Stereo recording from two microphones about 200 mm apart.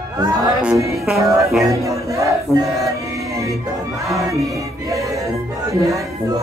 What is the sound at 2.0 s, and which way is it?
Battle cry, 15° right (ahead or behind).